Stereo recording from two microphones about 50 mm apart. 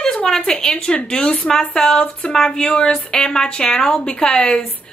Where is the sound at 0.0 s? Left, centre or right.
Centre.